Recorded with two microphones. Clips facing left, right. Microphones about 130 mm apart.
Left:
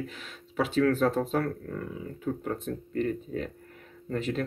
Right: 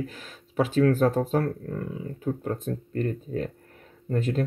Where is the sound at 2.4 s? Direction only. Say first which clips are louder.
Right 2 dB; 40° right (ahead or behind).